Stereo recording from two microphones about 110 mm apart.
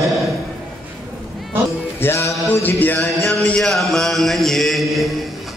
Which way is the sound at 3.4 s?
5° left (ahead or behind).